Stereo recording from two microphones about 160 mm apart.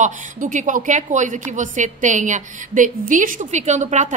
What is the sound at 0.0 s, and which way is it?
A woman's voice, 50° right (ahead or behind).